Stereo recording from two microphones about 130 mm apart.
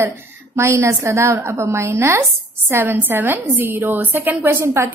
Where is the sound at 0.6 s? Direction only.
20° right (ahead or behind).